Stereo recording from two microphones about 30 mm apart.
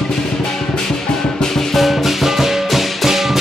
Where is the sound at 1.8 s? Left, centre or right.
Centre.